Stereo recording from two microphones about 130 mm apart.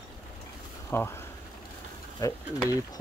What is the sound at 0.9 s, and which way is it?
Speech, 20° left (ahead or behind).